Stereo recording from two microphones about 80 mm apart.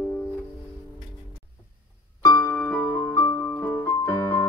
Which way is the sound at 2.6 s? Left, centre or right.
Left.